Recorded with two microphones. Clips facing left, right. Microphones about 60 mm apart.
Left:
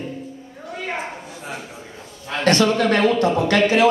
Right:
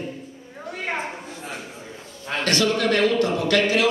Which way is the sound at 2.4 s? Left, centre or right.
Left.